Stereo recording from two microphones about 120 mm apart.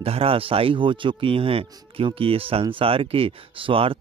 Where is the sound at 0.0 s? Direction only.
55° right (ahead or behind).